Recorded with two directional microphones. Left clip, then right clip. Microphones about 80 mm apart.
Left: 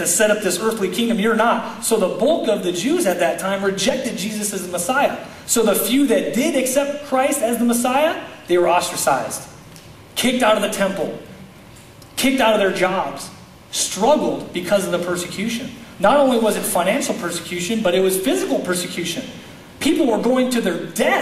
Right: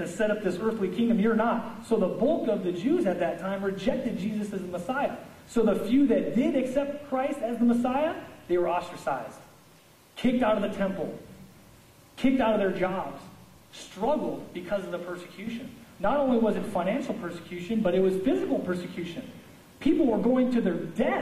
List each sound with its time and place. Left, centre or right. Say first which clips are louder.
0.0 s speech: left 10 dB; centre
12.2 s speech: left 9 dB; right